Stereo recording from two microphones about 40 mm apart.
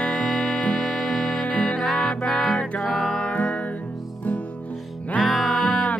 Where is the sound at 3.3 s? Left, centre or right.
Left.